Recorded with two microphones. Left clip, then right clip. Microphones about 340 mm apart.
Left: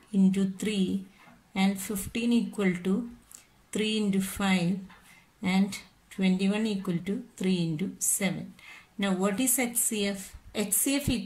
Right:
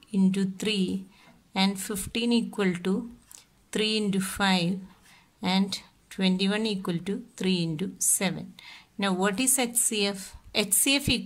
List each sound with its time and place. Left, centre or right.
0.1 s speech: right